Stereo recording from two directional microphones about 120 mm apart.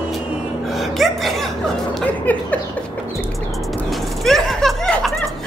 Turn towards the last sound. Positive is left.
turn(degrees=5)  # may be behind; listen again after turning